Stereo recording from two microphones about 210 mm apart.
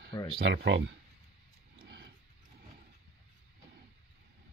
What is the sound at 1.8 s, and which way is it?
Wild animals, 50° right (ahead or behind).